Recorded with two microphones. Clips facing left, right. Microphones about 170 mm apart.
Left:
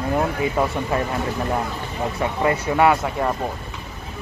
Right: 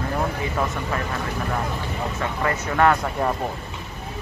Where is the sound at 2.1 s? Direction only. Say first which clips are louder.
Left 5 dB; 10° left (ahead or behind).